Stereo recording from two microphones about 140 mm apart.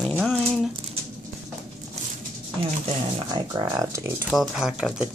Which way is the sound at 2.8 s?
35° right (ahead or behind).